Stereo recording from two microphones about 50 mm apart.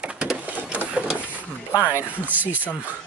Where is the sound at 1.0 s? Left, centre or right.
Right.